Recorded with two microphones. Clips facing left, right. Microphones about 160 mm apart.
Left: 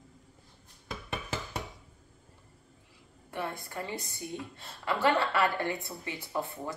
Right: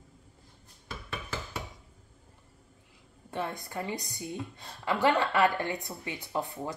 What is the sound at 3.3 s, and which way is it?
A woman's voice, 20° right (ahead or behind).